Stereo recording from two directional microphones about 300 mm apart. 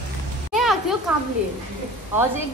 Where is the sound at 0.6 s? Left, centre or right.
Centre.